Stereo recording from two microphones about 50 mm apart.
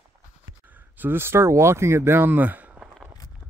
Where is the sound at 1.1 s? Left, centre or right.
Right.